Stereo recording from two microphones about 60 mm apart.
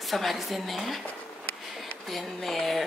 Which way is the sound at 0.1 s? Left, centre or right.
Centre.